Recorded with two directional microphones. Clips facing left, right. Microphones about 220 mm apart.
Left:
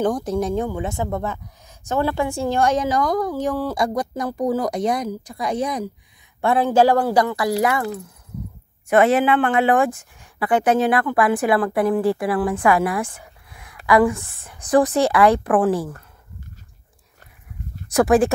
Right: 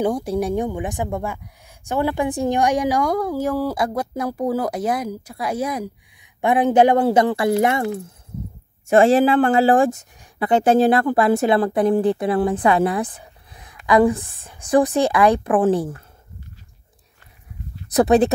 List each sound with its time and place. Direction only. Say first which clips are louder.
0.0 s a woman's voice: even; 10° right (ahead or behind)
6.4 s a woman's voice: right 1 dB; 20° right (ahead or behind)
17.9 s speech: right 1 dB; 20° right (ahead or behind)